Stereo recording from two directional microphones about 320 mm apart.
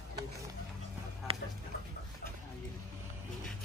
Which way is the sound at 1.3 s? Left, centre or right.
Centre.